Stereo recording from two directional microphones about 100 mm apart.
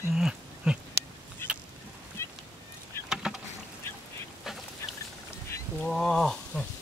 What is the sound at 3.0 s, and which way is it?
Rowboat, 5° right (ahead or behind).